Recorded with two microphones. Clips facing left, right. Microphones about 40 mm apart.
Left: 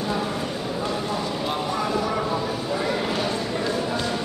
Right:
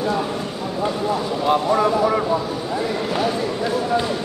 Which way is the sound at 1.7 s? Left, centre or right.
Centre.